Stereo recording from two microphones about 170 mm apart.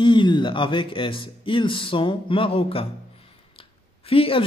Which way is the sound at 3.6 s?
30° left (ahead or behind).